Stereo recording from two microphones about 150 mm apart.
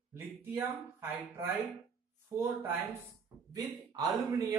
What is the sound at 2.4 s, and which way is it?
Speech, 15° right (ahead or behind).